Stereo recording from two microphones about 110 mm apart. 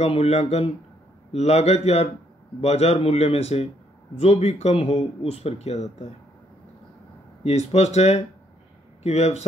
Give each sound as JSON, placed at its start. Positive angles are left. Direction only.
{"t": 0.0, "sound": "speech", "side_deg": 70}
{"t": 7.4, "sound": "a man's voice", "side_deg": 75}